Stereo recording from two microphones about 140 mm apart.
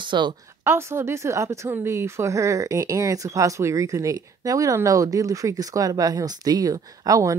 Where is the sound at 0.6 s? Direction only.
20° right (ahead or behind).